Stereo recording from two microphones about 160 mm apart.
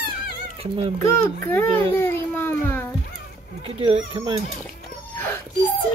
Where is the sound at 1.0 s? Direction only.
15° left (ahead or behind).